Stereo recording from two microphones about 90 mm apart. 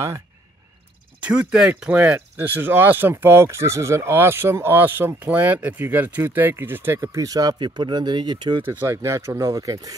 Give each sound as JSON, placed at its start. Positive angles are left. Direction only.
{"t": 1.2, "sound": "speech", "side_deg": -15}
{"t": 7.0, "sound": "speech", "side_deg": -40}
{"t": 8.6, "sound": "speech", "side_deg": -25}